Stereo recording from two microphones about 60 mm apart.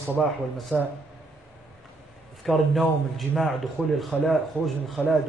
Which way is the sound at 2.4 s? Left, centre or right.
Centre.